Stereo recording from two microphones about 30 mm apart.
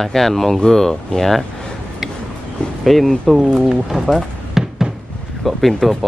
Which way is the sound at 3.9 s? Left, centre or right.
Centre.